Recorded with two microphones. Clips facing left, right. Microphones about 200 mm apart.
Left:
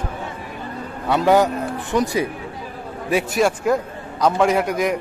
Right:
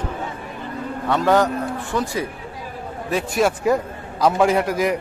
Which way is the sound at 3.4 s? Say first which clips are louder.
Right 2 dB; 5° right (ahead or behind).